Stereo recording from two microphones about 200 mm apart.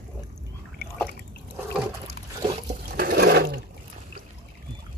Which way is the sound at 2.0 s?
25° right (ahead or behind).